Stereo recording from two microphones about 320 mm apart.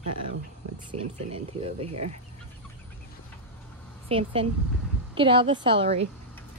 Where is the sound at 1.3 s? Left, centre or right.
Centre.